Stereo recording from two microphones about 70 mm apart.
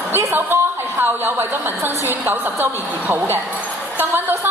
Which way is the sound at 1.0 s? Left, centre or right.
Right.